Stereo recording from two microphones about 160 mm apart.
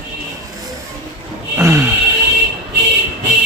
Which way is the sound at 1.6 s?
20° right (ahead or behind).